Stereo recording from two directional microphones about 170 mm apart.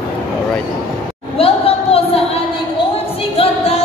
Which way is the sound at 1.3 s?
35° left (ahead or behind).